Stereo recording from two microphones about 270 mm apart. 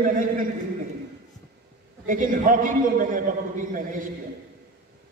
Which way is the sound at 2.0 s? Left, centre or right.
Right.